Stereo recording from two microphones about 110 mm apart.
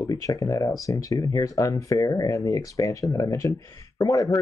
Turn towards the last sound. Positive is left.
turn(degrees=30)  # may be behind; listen again after turning